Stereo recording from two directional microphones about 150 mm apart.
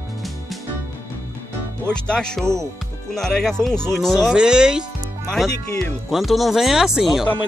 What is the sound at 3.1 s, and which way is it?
Speech, 5° left (ahead or behind).